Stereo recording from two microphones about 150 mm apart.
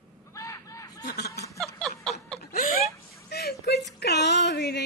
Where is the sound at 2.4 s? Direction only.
70° left (ahead or behind).